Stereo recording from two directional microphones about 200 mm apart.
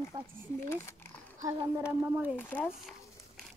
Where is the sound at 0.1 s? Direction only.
20° right (ahead or behind).